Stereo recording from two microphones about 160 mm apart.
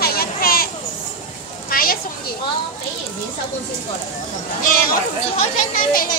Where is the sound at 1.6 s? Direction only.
65° left (ahead or behind).